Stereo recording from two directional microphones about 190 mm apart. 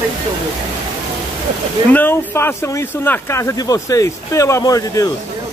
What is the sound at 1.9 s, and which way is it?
Speech, 10° left (ahead or behind).